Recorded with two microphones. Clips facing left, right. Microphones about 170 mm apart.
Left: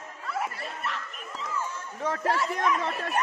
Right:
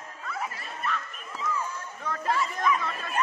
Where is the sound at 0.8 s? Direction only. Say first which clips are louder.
Right 4 dB; 80° left.